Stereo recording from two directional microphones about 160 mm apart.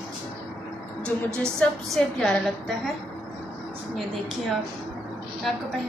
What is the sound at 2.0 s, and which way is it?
Speech, 5° left (ahead or behind).